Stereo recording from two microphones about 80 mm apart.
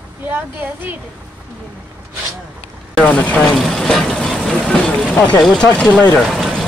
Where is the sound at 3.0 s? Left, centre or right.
Centre.